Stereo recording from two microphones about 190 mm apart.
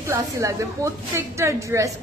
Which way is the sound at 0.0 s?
15° right (ahead or behind).